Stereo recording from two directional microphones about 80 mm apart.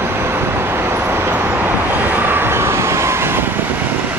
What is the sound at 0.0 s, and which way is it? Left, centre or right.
Vehicle, right.